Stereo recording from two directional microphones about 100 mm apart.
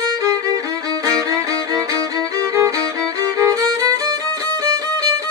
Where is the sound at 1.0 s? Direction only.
40° right (ahead or behind).